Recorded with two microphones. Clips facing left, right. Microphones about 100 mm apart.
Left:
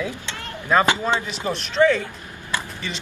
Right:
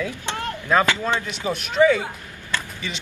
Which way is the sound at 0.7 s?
Centre (ahead or behind).